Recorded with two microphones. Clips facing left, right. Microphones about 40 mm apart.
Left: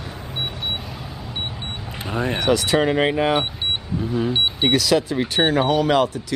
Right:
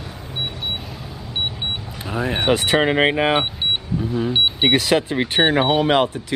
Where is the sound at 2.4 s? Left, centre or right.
Right.